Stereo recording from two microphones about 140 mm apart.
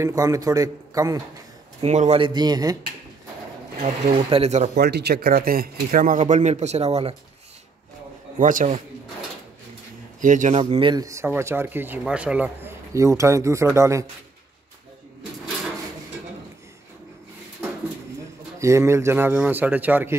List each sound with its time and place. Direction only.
0.0 s a man's voice: 25° right (ahead or behind)
1.8 s speech: 50° right (ahead or behind)
2.1 s a man's voice: 35° right (ahead or behind)
3.8 s speech: 45° right (ahead or behind)
5.1 s speech: 90° right; by 7.2 s 45° right (ahead or behind)
8.4 s a man's voice: 70° right (ahead or behind)
10.2 s speech: 65° right (ahead or behind)
10.8 s speech: 30° right (ahead or behind); by 12.7 s 10° right (ahead or behind)
12.9 s a man's voice: 20° right (ahead or behind)
18.6 s speech: 20° right (ahead or behind)